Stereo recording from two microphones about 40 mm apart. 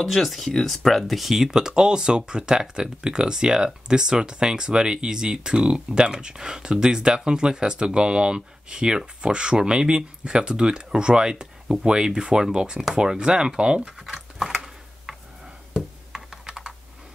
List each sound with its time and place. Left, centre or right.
0.0 s speech: centre
1.3 s speech: centre
14.4 s a sound: centre